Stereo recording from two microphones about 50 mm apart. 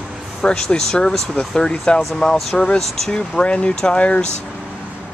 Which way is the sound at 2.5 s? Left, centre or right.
Left.